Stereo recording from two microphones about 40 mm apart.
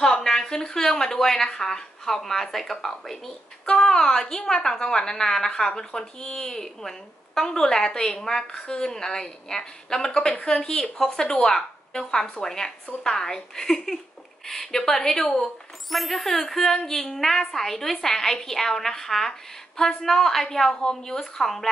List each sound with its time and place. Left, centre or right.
0.2 s speech: centre
3.6 s a woman's voice: left
15.9 s speech: centre